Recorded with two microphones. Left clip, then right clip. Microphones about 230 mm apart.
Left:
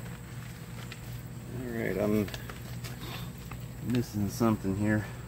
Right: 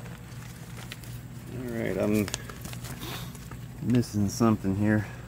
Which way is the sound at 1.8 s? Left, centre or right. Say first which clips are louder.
Right 2 dB; right.